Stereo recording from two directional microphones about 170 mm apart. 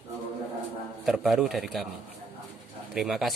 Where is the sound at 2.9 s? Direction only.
Centre (ahead or behind).